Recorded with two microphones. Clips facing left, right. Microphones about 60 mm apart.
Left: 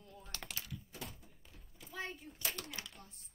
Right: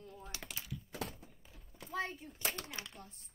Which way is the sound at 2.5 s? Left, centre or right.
Right.